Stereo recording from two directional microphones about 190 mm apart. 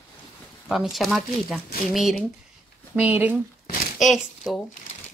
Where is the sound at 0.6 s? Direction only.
Centre (ahead or behind).